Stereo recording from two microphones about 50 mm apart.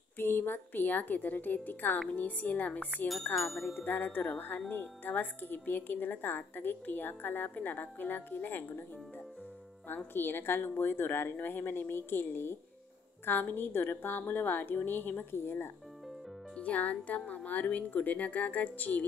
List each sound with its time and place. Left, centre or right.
0.2 s speech: left
3.3 s music: centre
3.8 s speech: left
10.1 s a woman's voice: left
16.5 s speech: left